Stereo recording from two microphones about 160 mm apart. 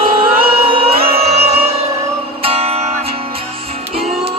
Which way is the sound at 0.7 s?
35° right (ahead or behind).